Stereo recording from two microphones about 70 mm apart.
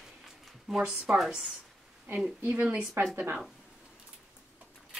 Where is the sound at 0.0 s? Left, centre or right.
Centre.